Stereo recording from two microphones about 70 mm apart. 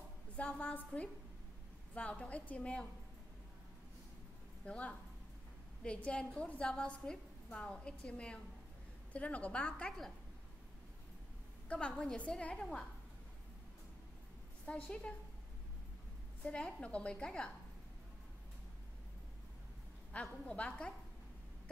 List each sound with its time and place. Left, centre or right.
0.4 s a woman's voice: centre
4.6 s a woman's voice: centre
11.7 s a woman's voice: centre
14.7 s a woman's voice: centre
16.4 s a woman's voice: centre
20.4 s a woman's voice: centre